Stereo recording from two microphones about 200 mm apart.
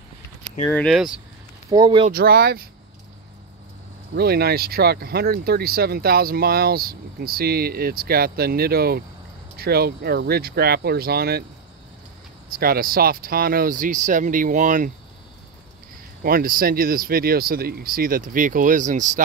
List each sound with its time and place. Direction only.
0.7 s speech: 5° left (ahead or behind)
1.7 s speech: 20° right (ahead or behind)
2.0 s speech: 50° right (ahead or behind)
4.1 s speech: 50° right (ahead or behind)
12.4 s speech: 45° right (ahead or behind)
16.2 s speech: 45° right (ahead or behind)